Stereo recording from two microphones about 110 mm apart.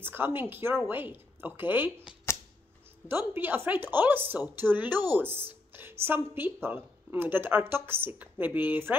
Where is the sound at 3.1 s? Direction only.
20° right (ahead or behind).